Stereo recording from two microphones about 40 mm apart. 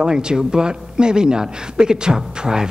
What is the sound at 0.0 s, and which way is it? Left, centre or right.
A man's voice, right.